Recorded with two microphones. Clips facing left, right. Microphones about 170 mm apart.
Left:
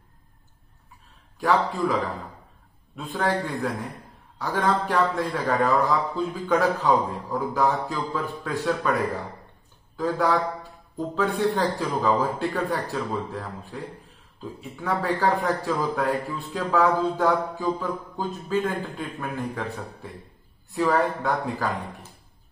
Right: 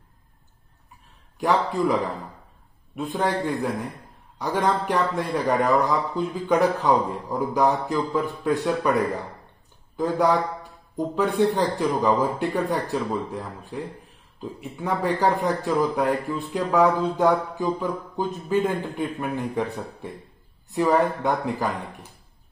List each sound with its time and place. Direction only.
1.4 s a man's voice: 20° right (ahead or behind)
3.0 s a man's voice: 20° right (ahead or behind)
9.9 s a man's voice: 20° right (ahead or behind)